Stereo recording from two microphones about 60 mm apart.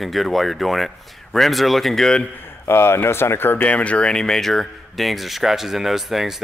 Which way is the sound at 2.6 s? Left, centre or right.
Left.